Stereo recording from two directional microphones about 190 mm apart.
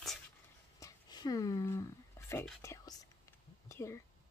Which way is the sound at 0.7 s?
20° left (ahead or behind).